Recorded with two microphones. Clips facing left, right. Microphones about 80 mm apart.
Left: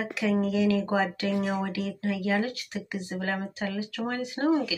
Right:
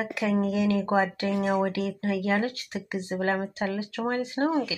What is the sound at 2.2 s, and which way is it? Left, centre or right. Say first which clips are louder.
Speech: right 1 dB; right.